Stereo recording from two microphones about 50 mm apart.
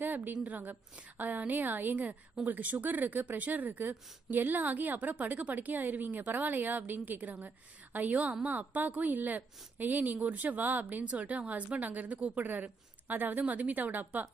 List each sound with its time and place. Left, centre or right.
0.0 s a sound: right
0.4 s a woman's voice: right
12.4 s a woman's voice: right